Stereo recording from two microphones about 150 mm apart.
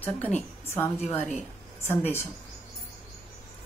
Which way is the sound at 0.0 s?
10° left (ahead or behind).